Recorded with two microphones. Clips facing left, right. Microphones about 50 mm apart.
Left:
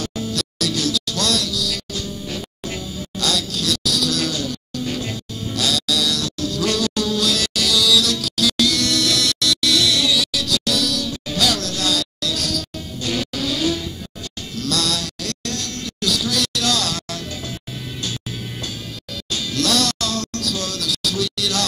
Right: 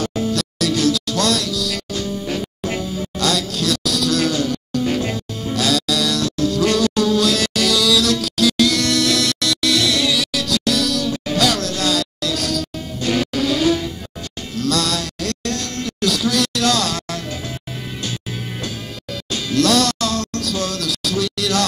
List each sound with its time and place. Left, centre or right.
0.0 s music: right
14.6 s a sound: right
19.3 s music: right